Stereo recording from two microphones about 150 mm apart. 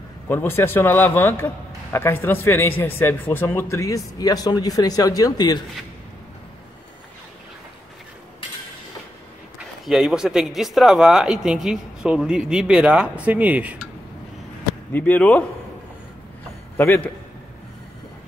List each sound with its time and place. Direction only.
0.3 s speech: 15° left (ahead or behind)
9.8 s speech: 5° right (ahead or behind)
14.9 s speech: 10° left (ahead or behind)
16.7 s a man's voice: 10° left (ahead or behind)